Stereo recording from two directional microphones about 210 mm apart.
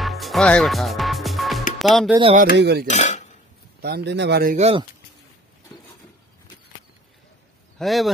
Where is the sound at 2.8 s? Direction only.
35° left (ahead or behind).